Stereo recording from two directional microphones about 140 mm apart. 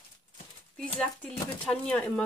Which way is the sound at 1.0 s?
10° left (ahead or behind).